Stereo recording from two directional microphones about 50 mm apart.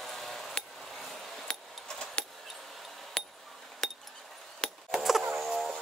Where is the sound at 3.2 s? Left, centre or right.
Centre.